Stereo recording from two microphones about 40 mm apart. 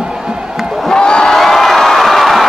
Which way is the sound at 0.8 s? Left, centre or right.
Left.